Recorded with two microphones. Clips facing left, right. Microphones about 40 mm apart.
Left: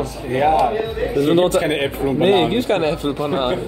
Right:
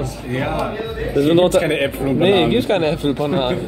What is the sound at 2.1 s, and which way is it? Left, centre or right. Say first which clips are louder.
Speech: right 1 dB; right.